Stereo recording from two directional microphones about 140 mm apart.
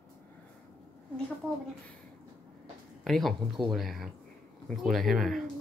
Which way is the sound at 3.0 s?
Centre (ahead or behind).